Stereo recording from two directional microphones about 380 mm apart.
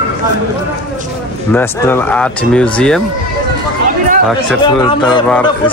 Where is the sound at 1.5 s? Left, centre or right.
Centre.